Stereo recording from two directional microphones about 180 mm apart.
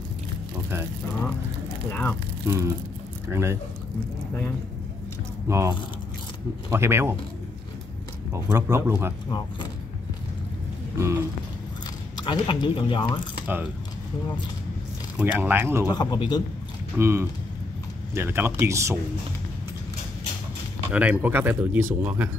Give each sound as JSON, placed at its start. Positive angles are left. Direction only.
{"t": 1.9, "sound": "speech", "side_deg": 10}
{"t": 2.4, "sound": "speech", "side_deg": -15}
{"t": 5.5, "sound": "speech", "side_deg": -15}
{"t": 8.3, "sound": "speech", "side_deg": -15}
{"t": 12.2, "sound": "speech", "side_deg": 25}
{"t": 15.1, "sound": "speech", "side_deg": -10}
{"t": 15.9, "sound": "speech", "side_deg": 25}
{"t": 16.9, "sound": "speech", "side_deg": -15}
{"t": 20.9, "sound": "speech", "side_deg": -10}